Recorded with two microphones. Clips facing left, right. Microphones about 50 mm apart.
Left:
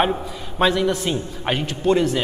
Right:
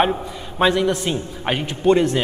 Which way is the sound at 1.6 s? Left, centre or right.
Centre.